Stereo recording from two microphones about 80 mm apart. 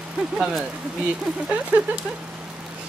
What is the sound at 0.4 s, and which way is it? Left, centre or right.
Speech, centre.